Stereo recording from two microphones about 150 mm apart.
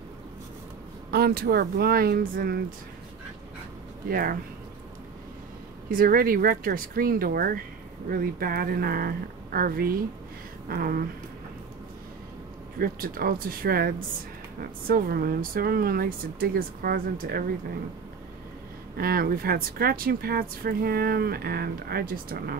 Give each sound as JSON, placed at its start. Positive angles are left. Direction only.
{"t": 1.1, "sound": "speech", "side_deg": -90}
{"t": 4.1, "sound": "speech", "side_deg": -75}
{"t": 5.9, "sound": "speech", "side_deg": -70}
{"t": 12.7, "sound": "speech", "side_deg": -80}
{"t": 14.6, "sound": "speech", "side_deg": -75}
{"t": 18.9, "sound": "speech", "side_deg": -85}